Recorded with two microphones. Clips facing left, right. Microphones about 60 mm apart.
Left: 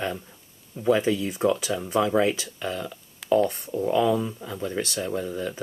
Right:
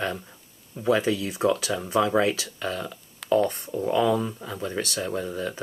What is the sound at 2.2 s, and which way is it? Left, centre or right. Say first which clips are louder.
Speech: left 1 dB; centre.